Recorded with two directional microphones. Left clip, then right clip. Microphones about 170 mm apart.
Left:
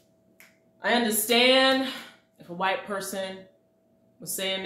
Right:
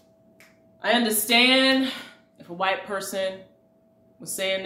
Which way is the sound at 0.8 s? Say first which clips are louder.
Right 2 dB; 15° right (ahead or behind).